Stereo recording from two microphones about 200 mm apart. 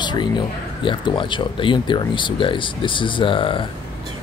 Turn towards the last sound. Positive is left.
turn(degrees=25)  # may be behind; listen again after turning